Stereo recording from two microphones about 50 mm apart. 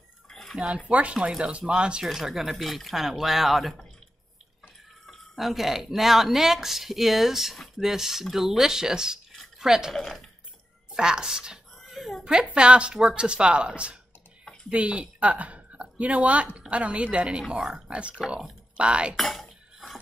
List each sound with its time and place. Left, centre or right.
0.3 s a sound: centre
0.6 s speech: right
2.0 s speech: centre
5.0 s speech: centre
9.9 s speech: centre
10.9 s a sound: centre
12.0 s a sound: centre
12.5 s a woman's voice: right
19.1 s speech: centre